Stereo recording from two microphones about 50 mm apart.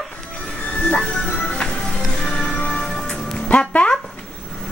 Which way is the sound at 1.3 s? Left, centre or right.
Left.